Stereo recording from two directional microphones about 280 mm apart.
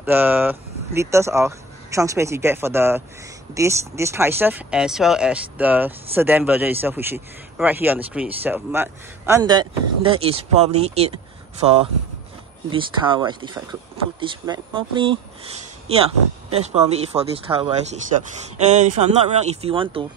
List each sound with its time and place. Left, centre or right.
0.0 s speech: centre
12.6 s speech: centre